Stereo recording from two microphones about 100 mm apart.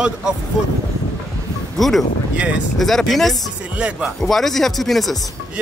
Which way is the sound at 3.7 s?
10° right (ahead or behind).